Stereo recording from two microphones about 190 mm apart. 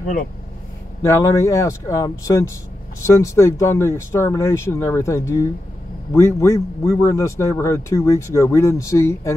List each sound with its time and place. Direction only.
1.0 s a man's voice: 15° left (ahead or behind)